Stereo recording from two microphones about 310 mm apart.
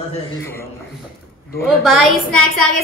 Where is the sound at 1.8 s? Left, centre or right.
Centre.